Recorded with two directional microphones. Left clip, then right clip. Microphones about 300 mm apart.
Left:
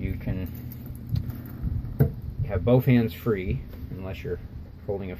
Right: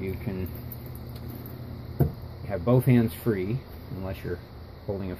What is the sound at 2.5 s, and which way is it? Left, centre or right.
Speech, centre.